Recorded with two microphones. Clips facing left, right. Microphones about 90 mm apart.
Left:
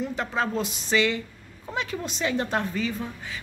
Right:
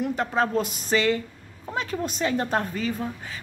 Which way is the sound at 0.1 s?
40° right (ahead or behind).